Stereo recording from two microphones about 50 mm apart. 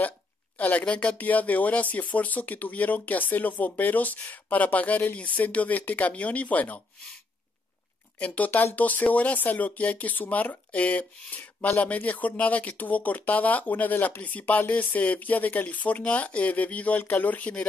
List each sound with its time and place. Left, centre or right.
0.6 s speech: left
8.7 s speech: left